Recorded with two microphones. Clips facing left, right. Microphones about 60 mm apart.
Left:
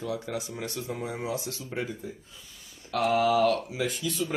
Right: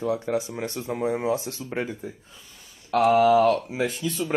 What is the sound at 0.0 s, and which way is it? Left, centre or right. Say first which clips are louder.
Speech: right 7 dB; right.